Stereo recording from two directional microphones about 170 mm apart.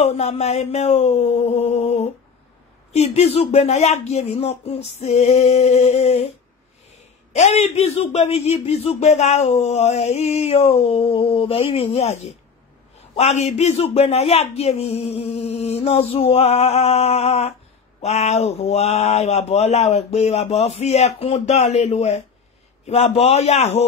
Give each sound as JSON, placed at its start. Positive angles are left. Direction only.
{"t": 0.2, "sound": "a man's voice", "side_deg": 40}
{"t": 7.3, "sound": "a man's voice", "side_deg": 40}